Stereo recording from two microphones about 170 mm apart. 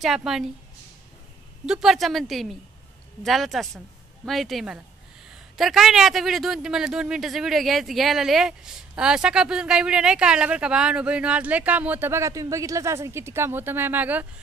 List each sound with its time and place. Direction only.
0.0 s a man's voice: centre (ahead or behind)
1.7 s a man's voice: 5° right (ahead or behind)